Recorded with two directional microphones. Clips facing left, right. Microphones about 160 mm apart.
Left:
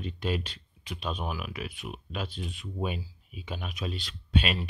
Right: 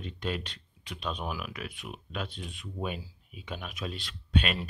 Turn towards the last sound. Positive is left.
turn(degrees=5)  # may be behind; listen again after turning